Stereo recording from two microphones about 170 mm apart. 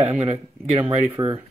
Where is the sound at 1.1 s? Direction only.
20° right (ahead or behind).